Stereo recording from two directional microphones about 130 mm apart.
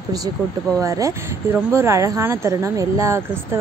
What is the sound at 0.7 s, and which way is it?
Speech, 25° right (ahead or behind).